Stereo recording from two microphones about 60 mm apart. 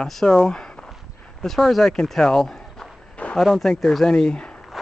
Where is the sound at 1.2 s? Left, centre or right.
Centre.